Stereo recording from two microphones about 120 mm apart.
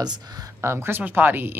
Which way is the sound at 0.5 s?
20° right (ahead or behind).